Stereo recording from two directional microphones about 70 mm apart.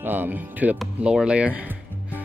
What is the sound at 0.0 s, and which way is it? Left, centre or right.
Speech, right.